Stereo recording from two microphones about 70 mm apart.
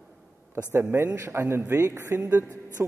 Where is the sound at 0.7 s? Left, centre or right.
Right.